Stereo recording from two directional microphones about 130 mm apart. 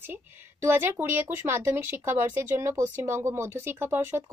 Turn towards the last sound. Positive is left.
turn(degrees=-15)  # may be behind; listen again after turning